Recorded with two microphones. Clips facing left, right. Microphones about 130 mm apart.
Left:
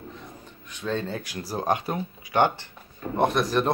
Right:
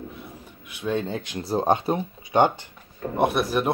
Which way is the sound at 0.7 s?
10° right (ahead or behind).